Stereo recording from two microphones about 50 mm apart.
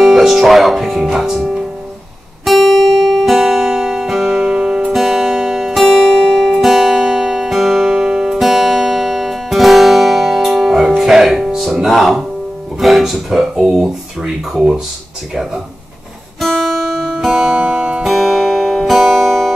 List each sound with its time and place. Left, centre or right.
0.0 s music: centre
4.4 s music: centre
4.9 s music: centre
12.8 s speech: centre
16.3 s guitar: centre
17.2 s music: centre
17.7 s music: centre
18.0 s music: centre